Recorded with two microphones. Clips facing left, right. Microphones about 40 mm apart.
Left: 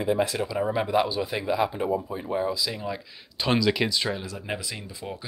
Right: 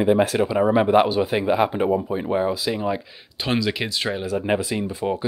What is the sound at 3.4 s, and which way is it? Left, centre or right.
Speech, centre.